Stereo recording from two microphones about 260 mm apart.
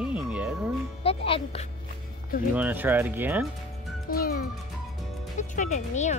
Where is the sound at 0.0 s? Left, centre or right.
Centre.